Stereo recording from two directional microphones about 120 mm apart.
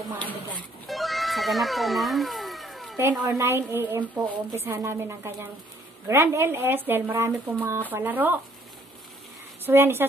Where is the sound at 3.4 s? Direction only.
20° right (ahead or behind).